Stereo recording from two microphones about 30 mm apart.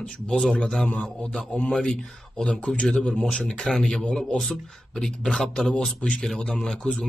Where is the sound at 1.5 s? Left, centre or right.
Left.